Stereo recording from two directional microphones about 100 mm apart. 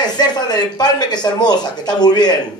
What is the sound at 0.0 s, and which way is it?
A woman's voice, 45° left (ahead or behind).